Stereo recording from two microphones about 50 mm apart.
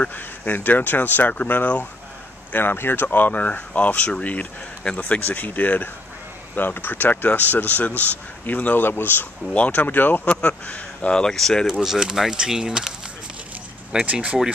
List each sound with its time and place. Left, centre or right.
0.1 s speech: left
2.5 s speech: left
9.5 s speech: left
10.2 s speech: left
11.3 s speech: centre
11.8 s speech: centre
14.1 s speech: right